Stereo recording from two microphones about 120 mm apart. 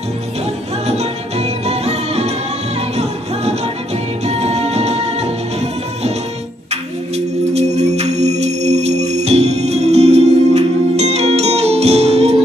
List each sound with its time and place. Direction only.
0.8 s music: 65° right (ahead or behind)
7.5 s music: 65° right (ahead or behind)